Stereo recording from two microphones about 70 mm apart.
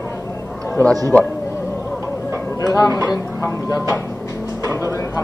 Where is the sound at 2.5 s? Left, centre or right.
Left.